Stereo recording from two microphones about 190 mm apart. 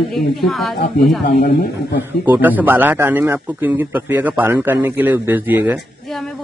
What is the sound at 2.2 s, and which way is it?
A man's voice, 10° right (ahead or behind).